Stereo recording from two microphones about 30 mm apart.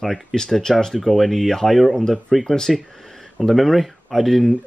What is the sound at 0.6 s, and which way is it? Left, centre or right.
Speech, left.